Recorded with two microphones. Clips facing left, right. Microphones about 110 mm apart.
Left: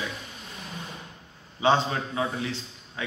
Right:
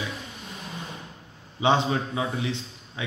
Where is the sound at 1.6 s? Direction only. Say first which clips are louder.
Right 1 dB; 15° right (ahead or behind).